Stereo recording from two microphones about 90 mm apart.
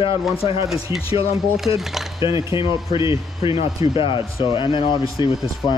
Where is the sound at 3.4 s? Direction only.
90° left; by 4.2 s 70° left (ahead or behind).